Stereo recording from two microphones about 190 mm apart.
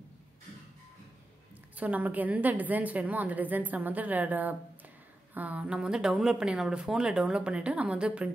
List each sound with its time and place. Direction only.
1.8 s a woman's voice: 10° right (ahead or behind)